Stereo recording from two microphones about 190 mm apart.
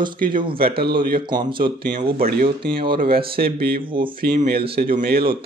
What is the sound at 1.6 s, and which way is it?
Speech, 50° right (ahead or behind).